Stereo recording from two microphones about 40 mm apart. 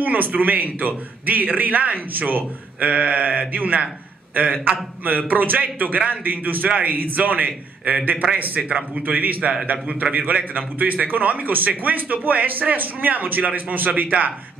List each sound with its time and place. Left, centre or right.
0.0 s a man's voice: right